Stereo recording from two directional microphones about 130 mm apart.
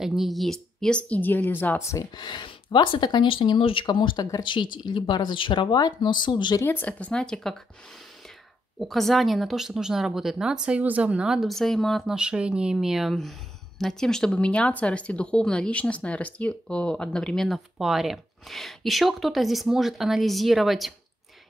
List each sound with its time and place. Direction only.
0.0 s speech: centre (ahead or behind); by 2.0 s 20° left (ahead or behind)
2.1 s speech: 35° left (ahead or behind)
6.6 s speech: 15° left (ahead or behind)
8.7 s speech: centre (ahead or behind)